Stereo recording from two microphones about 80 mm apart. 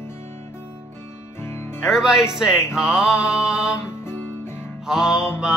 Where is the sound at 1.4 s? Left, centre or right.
Left.